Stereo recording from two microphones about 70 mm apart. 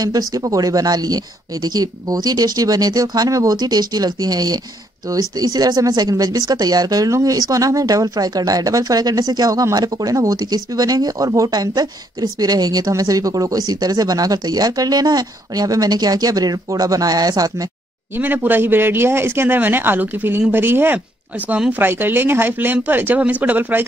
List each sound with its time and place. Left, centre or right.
0.0 s speech: right
18.1 s a man's voice: right